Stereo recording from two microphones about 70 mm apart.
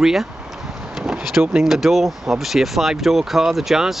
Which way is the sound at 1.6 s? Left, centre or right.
Centre.